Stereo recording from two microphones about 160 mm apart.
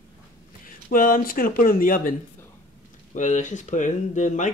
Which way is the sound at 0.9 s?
60° left (ahead or behind).